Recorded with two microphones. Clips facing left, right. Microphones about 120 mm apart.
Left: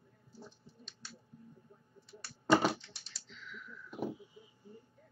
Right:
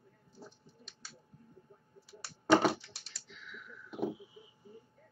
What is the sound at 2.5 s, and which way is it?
Computer keyboard, 5° left (ahead or behind).